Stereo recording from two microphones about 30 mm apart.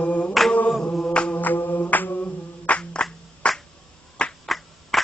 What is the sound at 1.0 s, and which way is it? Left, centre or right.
Music, left.